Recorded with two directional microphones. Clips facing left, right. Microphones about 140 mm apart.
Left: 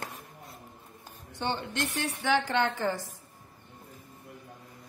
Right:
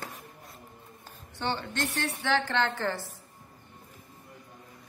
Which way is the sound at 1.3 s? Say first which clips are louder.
Even; 15° left (ahead or behind).